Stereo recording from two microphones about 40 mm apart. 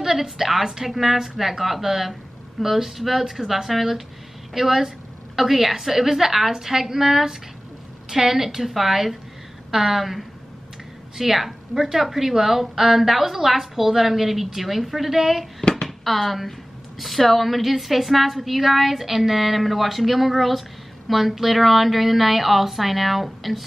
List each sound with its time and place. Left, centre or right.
0.0 s a woman's voice: centre
15.6 s a sound: centre
16.0 s a woman's voice: centre